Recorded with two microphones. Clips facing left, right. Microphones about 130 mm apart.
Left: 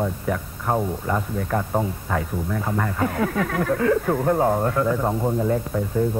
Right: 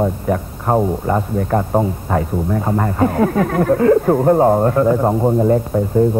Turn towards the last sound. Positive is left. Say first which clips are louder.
# right 8 dB
turn(degrees=-35)  # may be behind; listen again after turning